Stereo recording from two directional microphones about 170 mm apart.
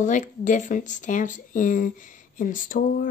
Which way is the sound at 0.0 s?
45° left (ahead or behind).